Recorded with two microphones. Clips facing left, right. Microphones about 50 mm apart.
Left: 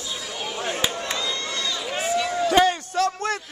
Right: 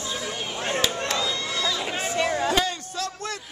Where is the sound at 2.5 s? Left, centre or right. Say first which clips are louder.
Left 7 dB; left.